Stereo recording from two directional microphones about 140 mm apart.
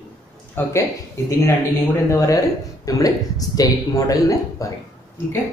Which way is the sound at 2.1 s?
20° left (ahead or behind).